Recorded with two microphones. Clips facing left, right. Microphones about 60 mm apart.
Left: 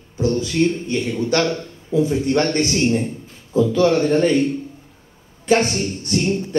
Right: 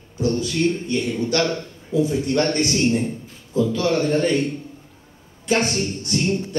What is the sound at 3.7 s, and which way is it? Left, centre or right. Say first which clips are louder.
Speech: left 6 dB; left.